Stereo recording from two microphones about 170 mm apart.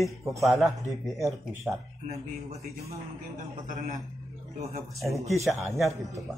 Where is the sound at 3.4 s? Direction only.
50° right (ahead or behind).